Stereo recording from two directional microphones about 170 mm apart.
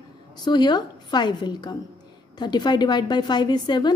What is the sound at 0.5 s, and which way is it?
A woman's voice, 25° left (ahead or behind).